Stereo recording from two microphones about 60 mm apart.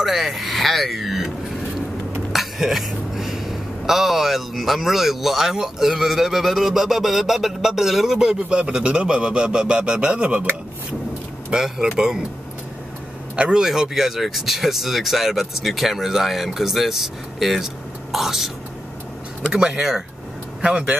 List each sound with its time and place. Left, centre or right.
0.0 s speech: centre
2.3 s speech: centre
11.5 s speech: centre
13.4 s speech: centre
19.5 s speech: centre